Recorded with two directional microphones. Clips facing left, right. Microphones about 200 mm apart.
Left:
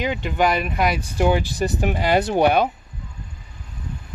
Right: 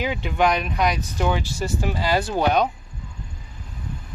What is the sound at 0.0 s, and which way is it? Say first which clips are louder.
Speech: left 1 dB; centre (ahead or behind).